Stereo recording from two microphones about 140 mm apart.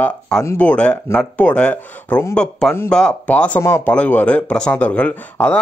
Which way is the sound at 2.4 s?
5° left (ahead or behind).